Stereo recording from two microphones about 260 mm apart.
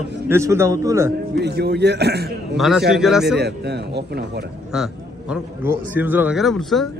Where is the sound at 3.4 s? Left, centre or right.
Right.